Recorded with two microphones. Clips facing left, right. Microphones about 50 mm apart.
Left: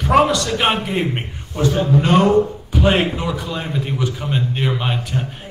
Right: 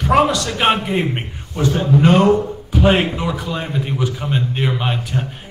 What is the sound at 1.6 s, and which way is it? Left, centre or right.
Speech, right.